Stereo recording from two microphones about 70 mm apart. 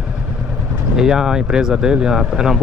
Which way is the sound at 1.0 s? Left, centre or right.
Centre.